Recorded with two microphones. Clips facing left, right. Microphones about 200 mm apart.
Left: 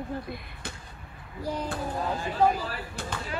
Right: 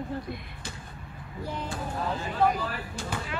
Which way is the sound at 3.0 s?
55° left (ahead or behind).